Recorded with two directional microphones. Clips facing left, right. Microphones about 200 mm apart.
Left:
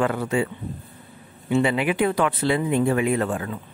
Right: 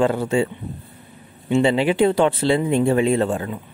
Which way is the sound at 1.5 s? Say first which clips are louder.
Right 4 dB; 25° right (ahead or behind).